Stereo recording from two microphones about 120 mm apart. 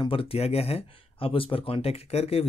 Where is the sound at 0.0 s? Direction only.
50° left (ahead or behind).